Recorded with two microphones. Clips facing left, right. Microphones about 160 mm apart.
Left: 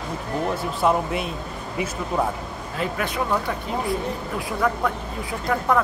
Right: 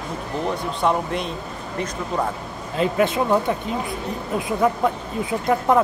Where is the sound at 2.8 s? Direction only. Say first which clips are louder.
Right 6 dB; 25° right (ahead or behind).